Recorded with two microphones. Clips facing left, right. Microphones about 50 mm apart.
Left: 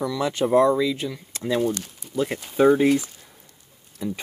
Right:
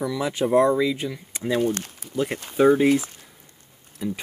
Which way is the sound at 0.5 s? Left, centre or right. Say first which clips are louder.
Even; right.